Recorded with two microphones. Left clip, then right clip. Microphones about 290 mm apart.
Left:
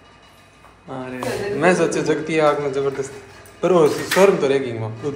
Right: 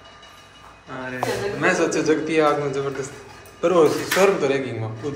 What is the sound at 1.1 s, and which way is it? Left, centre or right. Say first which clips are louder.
Speech: even; centre.